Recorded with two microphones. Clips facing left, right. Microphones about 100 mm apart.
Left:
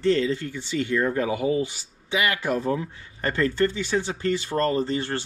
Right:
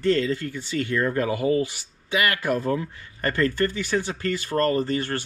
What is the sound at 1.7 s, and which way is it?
Speech, 55° right (ahead or behind).